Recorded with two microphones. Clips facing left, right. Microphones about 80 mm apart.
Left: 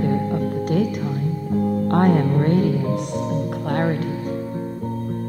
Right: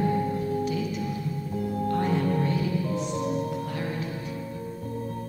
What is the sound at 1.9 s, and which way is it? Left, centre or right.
Speech, left.